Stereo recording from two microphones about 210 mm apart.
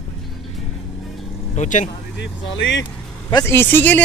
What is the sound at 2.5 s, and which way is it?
Speech, 60° left (ahead or behind).